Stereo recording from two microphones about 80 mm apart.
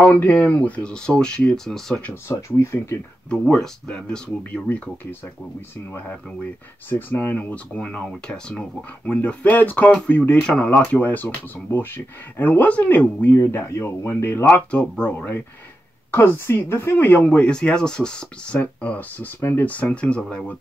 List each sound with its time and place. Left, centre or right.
0.3 s speech: centre
2.2 s speech: left
3.3 s speech: centre
4.4 s speech: left
6.9 s speech: left
13.4 s speech: left
14.7 s speech: centre
16.1 s speech: left; by 20.5 s centre